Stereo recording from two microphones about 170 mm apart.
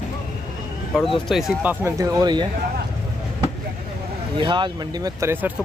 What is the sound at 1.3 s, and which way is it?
Speech, centre (ahead or behind).